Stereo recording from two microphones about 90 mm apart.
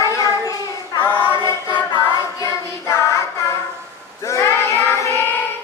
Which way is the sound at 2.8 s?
30° left (ahead or behind).